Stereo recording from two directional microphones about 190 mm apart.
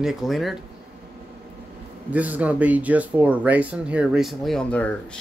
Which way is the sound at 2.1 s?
10° right (ahead or behind).